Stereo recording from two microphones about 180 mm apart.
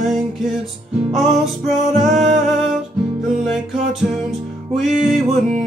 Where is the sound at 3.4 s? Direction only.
Centre (ahead or behind).